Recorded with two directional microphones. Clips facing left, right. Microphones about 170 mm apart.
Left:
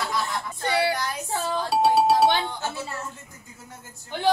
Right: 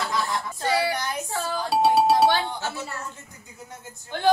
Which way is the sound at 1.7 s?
Centre (ahead or behind).